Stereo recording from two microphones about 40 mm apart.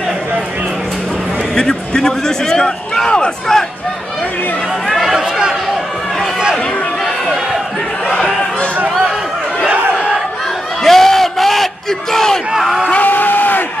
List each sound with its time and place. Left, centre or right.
1.5 s speech: centre
3.1 s speech: left
4.8 s chatter: centre
5.1 s a sound: centre
10.8 s battle cry: centre
12.9 s vehicle: left